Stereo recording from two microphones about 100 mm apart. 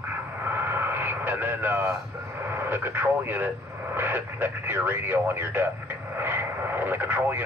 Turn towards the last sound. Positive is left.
turn(degrees=-15)  # may be behind; listen again after turning